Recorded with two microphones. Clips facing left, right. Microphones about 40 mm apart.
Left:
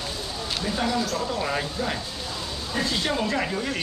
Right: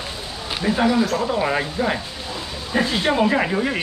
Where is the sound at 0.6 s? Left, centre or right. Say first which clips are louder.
Right 8 dB; right.